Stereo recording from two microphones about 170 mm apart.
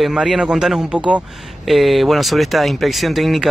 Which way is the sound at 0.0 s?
5° right (ahead or behind).